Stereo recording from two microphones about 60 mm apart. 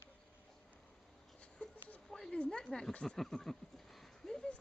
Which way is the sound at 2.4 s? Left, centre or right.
Centre.